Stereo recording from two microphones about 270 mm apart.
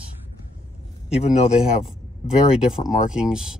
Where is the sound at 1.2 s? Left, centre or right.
Left.